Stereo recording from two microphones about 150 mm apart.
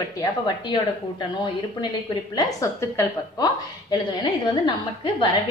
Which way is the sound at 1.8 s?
25° left (ahead or behind).